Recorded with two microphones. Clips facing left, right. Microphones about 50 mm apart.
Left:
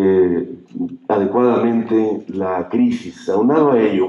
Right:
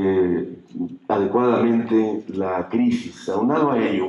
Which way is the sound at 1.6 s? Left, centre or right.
Centre.